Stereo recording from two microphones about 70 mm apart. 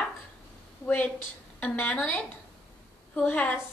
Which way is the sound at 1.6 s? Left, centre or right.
Left.